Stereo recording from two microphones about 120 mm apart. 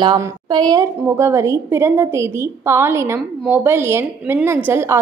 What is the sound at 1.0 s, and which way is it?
A woman's voice, 20° right (ahead or behind).